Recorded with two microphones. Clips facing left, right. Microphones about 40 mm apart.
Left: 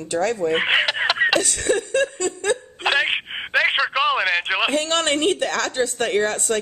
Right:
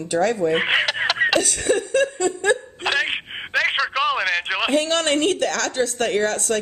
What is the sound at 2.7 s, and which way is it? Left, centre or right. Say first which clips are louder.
Telephone: left 2 dB; centre.